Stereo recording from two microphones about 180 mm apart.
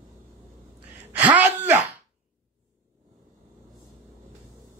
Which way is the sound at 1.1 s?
10° right (ahead or behind).